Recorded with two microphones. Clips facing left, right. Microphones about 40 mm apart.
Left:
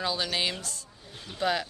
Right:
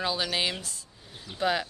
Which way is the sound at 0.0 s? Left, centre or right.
Centre.